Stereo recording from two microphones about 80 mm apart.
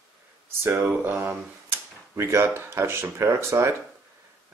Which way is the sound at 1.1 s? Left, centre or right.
Right.